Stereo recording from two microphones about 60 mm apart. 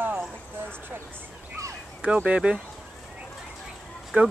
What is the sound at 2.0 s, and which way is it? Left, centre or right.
Speech, right.